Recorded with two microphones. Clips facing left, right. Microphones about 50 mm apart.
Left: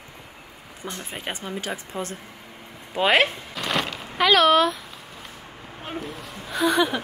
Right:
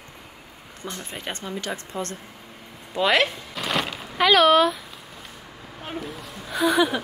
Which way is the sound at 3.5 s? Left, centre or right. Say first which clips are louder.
Even; centre.